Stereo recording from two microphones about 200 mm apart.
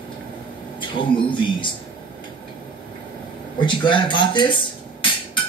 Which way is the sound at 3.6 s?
25° left (ahead or behind).